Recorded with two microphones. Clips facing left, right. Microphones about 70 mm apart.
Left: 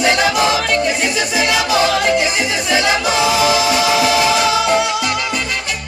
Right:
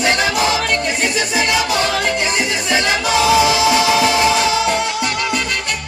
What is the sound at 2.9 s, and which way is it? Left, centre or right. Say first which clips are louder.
Music: right 1 dB; left.